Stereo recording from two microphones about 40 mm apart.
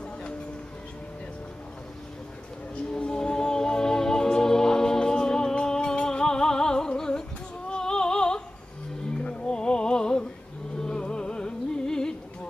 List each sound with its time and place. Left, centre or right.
2.7 s music: left
7.7 s opera: centre
9.2 s music: centre